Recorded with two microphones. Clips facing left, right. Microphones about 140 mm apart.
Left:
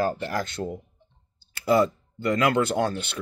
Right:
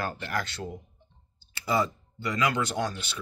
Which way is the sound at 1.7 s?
55° left (ahead or behind).